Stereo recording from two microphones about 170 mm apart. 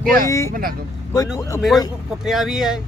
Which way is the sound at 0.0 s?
60° right (ahead or behind).